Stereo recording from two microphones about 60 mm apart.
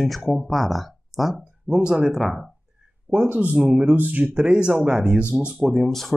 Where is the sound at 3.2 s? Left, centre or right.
Right.